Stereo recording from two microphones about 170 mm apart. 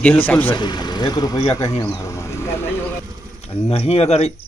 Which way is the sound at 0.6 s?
25° left (ahead or behind).